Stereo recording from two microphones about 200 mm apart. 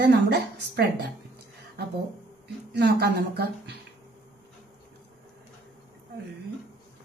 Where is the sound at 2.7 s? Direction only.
55° right (ahead or behind).